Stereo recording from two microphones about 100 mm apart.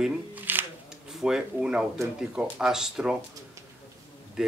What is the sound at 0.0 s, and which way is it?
Shuffling cards, 15° right (ahead or behind).